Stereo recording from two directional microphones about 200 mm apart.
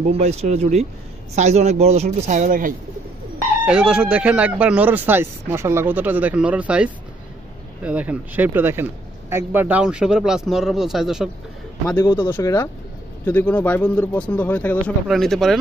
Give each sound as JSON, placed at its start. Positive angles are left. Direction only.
{"t": 0.2, "sound": "a woman's voice", "side_deg": -35}
{"t": 3.6, "sound": "speech", "side_deg": -5}
{"t": 12.0, "sound": "speech", "side_deg": 20}